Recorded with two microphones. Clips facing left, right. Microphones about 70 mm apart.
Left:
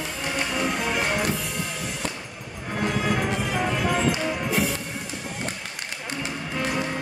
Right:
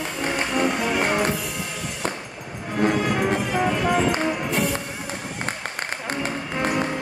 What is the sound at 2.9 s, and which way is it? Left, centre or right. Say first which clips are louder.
Music: right 3 dB; centre.